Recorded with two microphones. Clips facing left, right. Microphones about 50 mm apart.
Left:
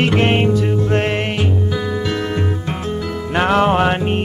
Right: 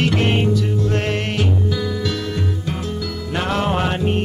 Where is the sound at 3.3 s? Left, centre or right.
Left.